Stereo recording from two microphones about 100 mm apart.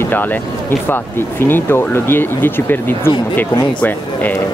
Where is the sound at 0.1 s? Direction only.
20° left (ahead or behind).